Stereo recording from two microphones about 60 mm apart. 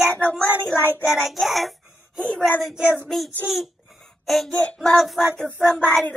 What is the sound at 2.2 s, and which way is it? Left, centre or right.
Speech, centre.